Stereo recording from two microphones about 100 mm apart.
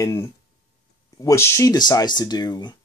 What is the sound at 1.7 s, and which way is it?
Speech, 45° left (ahead or behind).